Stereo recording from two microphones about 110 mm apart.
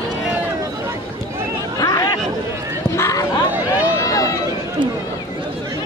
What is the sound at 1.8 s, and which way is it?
Chatter, 35° left (ahead or behind).